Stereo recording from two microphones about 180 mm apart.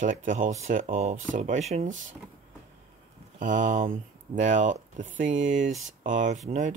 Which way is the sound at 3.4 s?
45° right (ahead or behind).